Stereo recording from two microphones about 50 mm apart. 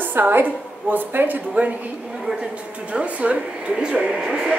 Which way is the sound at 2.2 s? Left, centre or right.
Centre.